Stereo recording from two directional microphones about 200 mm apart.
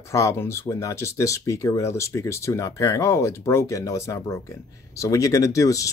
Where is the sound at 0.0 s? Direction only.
15° left (ahead or behind).